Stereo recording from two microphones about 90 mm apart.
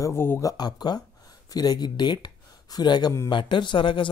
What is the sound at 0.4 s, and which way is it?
Speech, 45° left (ahead or behind).